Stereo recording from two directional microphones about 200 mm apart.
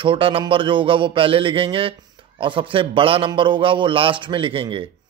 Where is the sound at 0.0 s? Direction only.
25° right (ahead or behind).